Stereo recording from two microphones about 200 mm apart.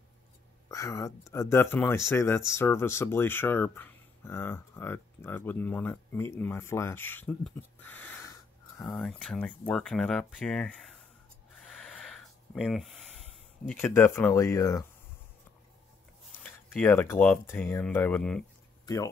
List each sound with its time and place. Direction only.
0.7 s speech: 15° left (ahead or behind)
11.5 s a sound: centre (ahead or behind)
16.4 s speech: 10° left (ahead or behind)